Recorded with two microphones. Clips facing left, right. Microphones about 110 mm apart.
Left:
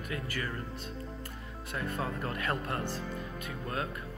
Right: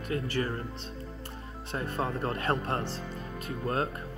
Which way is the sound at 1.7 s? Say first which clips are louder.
Right 3 dB; 30° right (ahead or behind).